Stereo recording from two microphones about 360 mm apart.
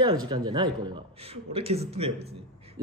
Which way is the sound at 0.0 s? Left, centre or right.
Centre.